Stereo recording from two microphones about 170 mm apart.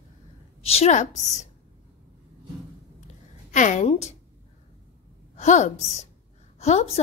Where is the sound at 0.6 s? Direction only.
40° left (ahead or behind).